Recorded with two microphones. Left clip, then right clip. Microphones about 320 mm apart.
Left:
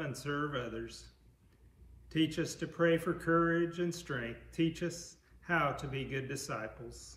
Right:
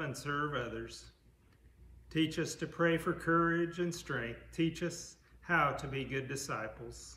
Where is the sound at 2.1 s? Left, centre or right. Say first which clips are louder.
Left 1 dB; centre.